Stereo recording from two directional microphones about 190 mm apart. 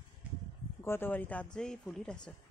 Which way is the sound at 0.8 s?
10° left (ahead or behind).